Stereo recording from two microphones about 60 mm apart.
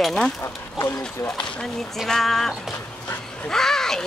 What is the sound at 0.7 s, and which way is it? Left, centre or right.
Speech, left.